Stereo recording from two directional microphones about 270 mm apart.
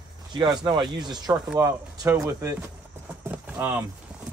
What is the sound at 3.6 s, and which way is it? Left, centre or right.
Speech, centre.